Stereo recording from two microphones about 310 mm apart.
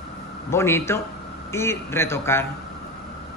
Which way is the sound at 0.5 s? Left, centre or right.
Centre.